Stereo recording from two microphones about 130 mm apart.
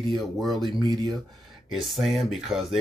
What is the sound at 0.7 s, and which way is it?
Speech, 35° right (ahead or behind).